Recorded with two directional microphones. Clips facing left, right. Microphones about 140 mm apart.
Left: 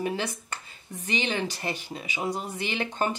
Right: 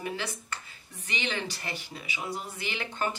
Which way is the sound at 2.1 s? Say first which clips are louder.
Left 6 dB; 40° left (ahead or behind).